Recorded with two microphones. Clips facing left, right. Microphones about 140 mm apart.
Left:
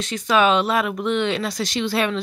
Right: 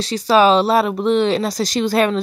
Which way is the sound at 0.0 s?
35° right (ahead or behind).